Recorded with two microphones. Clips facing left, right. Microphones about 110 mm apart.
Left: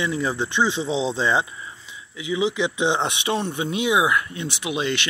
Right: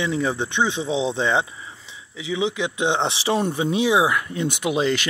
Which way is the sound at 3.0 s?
30° right (ahead or behind).